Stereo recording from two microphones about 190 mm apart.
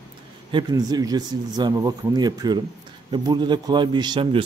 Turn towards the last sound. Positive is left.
turn(degrees=-25)  # may be behind; listen again after turning